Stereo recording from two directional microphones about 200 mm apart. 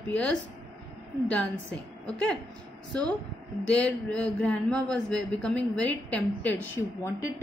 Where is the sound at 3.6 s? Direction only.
5° left (ahead or behind).